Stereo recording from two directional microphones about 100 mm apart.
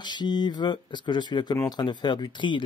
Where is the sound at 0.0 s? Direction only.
45° left (ahead or behind).